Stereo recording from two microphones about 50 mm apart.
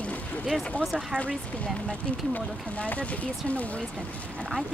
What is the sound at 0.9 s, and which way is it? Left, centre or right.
Speech, centre.